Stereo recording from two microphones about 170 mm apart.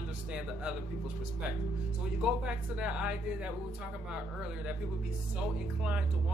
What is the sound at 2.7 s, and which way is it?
Speech, 5° right (ahead or behind).